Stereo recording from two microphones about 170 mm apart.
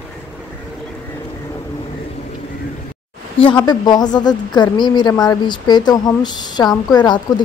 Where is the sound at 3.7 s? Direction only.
25° left (ahead or behind).